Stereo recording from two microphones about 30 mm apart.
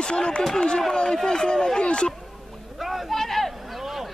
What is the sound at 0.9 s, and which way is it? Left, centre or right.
Speech, left.